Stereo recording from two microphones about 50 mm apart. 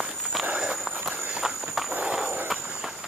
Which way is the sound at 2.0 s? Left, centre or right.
Centre.